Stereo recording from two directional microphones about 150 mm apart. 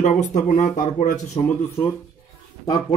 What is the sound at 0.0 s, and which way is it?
Speech, 55° left (ahead or behind).